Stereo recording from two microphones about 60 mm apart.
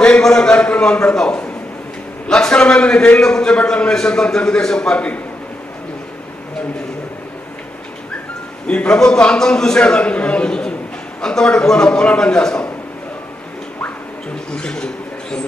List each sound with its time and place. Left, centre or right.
0.2 s a man's voice: centre
8.6 s a man's voice: centre
14.5 s a man's voice: centre